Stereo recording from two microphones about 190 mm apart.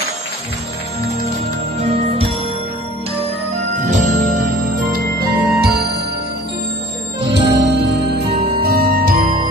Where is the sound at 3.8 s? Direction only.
40° right (ahead or behind).